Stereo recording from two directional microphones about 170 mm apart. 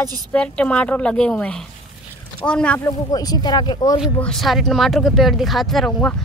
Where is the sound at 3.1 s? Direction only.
20° left (ahead or behind).